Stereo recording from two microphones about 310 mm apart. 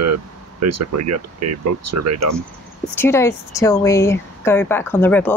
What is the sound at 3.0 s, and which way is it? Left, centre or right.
Speech, centre.